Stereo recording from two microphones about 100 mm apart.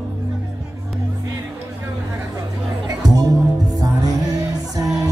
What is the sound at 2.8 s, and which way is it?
Music, 40° right (ahead or behind).